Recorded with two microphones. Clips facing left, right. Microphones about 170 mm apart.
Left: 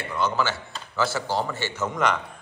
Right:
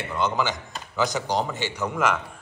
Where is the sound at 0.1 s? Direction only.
15° right (ahead or behind).